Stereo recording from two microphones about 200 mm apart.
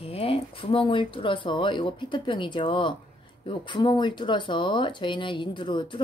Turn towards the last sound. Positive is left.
turn(degrees=25)  # may be behind; listen again after turning